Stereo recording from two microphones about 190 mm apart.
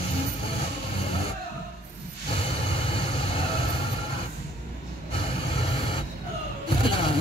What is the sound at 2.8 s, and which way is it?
Vehicle, 30° left (ahead or behind).